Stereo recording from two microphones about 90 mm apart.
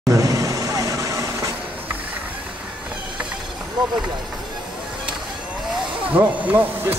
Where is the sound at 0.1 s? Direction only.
40° right (ahead or behind).